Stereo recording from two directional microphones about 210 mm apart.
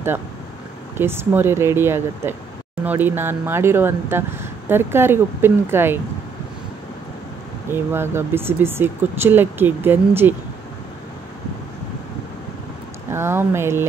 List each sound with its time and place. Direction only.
0.9 s speech: 10° right (ahead or behind)
7.7 s speech: 10° right (ahead or behind)
13.1 s speech: 10° right (ahead or behind)